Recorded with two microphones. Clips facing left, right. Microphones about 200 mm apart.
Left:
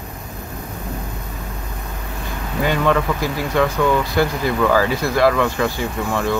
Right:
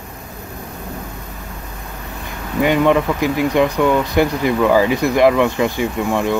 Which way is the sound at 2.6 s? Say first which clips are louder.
Right 4 dB; 15° right (ahead or behind).